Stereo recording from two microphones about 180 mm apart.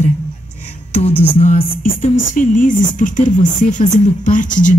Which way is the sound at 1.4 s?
35° left (ahead or behind).